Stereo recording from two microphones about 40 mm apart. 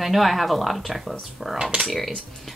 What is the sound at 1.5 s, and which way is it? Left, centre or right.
Speech, centre.